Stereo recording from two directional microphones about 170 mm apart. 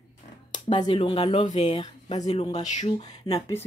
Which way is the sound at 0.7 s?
30° left (ahead or behind).